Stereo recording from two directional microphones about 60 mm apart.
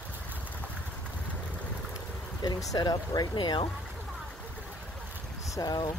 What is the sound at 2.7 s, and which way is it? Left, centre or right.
Speech, left.